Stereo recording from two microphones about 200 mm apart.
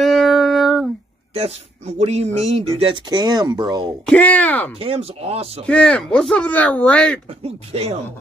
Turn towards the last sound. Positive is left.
turn(degrees=-30)  # may be behind; listen again after turning